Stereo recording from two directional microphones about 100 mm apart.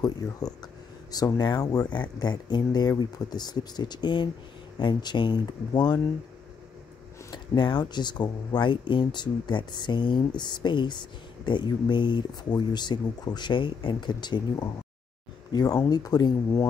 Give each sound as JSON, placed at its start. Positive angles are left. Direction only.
{"t": 0.0, "sound": "speech", "side_deg": 40}
{"t": 7.2, "sound": "speech", "side_deg": 50}